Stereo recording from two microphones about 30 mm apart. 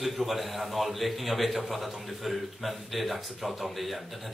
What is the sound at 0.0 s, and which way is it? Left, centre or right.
A man's voice, centre.